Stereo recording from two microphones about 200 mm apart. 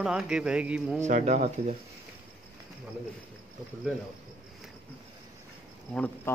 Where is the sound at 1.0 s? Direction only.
35° right (ahead or behind).